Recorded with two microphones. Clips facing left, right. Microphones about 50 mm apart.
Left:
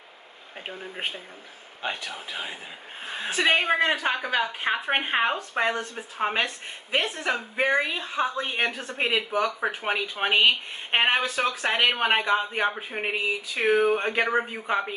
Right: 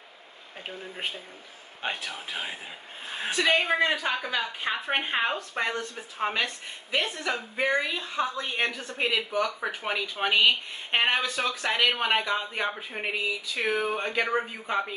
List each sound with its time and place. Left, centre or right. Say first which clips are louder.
0.7 s speech: left 2 dB; centre
3.3 s a woman's voice: left 2 dB; left